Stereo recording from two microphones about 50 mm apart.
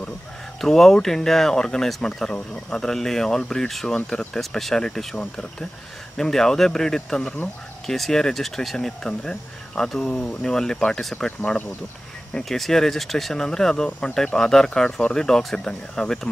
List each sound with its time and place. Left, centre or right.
0.6 s speech: centre
4.4 s speech: centre
12.4 s speech: centre